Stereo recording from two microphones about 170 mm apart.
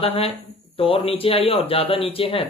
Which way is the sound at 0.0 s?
35° left (ahead or behind).